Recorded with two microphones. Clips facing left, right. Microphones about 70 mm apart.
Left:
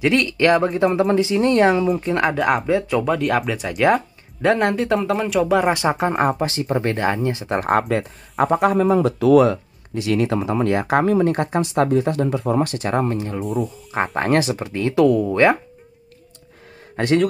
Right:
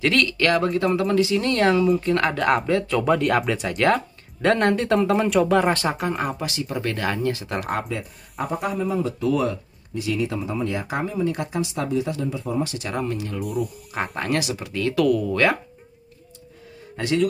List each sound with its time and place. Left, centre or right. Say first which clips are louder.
0.0 s speech: left 3 dB; left
6.1 s speech: left 7 dB; left
7.7 s speech: left 8 dB; left
12.7 s speech: left 6 dB; left
13.4 s speech: left 2 dB; centre
13.9 s speech: left 6 dB; left
16.9 s a man's voice: left 4 dB; left